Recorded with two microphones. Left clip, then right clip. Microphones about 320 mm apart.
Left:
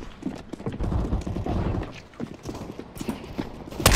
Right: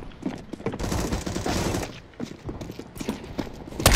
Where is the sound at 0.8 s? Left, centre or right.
Right.